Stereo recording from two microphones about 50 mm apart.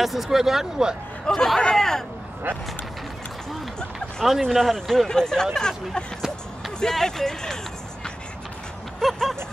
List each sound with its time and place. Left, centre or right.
0.0 s speech: centre
1.2 s speech: centre
4.2 s speech: centre
6.8 s speech: centre
9.0 s a sound: centre